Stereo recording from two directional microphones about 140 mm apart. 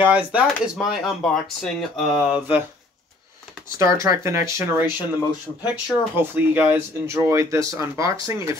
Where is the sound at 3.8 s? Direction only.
20° right (ahead or behind).